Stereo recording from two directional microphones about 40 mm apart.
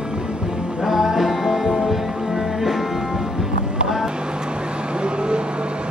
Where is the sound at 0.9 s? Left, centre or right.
Centre.